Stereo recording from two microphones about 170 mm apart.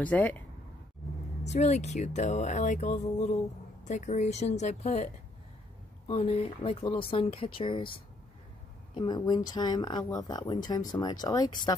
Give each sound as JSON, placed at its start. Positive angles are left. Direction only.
{"t": 0.0, "sound": "speech", "side_deg": 10}
{"t": 1.4, "sound": "speech", "side_deg": 40}